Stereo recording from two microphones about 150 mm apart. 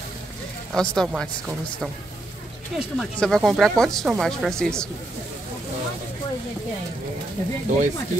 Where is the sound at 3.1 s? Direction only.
5° left (ahead or behind).